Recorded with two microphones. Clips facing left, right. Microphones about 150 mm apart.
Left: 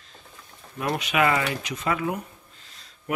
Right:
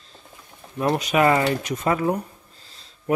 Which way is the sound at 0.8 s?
40° right (ahead or behind).